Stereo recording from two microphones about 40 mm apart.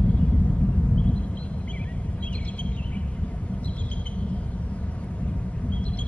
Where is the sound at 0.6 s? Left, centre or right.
Left.